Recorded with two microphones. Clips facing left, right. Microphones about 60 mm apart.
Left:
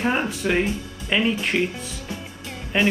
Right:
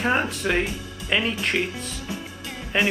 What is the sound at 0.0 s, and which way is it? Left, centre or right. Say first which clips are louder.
Speech: even; centre.